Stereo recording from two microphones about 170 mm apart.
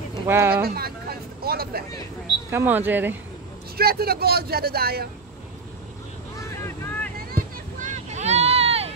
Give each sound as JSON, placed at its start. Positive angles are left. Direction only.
{"t": 0.3, "sound": "speech", "side_deg": -15}
{"t": 0.7, "sound": "speech", "side_deg": -65}
{"t": 2.5, "sound": "speech", "side_deg": -10}
{"t": 3.7, "sound": "speech", "side_deg": -65}
{"t": 6.3, "sound": "vehicle", "side_deg": 15}
{"t": 7.3, "sound": "a sound", "side_deg": -45}